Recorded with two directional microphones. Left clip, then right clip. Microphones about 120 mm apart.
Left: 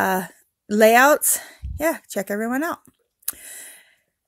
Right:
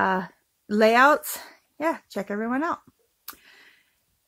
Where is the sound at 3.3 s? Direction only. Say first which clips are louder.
Left 6 dB; 40° left (ahead or behind).